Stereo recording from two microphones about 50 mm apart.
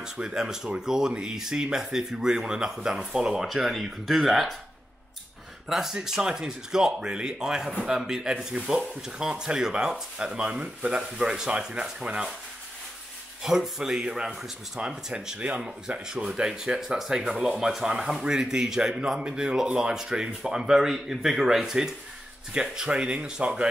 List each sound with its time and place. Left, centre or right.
0.0 s speech: centre
5.7 s speech: centre
13.4 s speech: centre